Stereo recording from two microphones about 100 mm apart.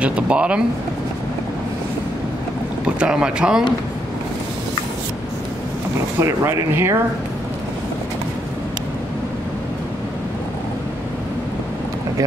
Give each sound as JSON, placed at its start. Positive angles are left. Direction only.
{"t": 0.0, "sound": "speech", "side_deg": -10}
{"t": 3.0, "sound": "speech", "side_deg": -10}
{"t": 6.1, "sound": "speech", "side_deg": -25}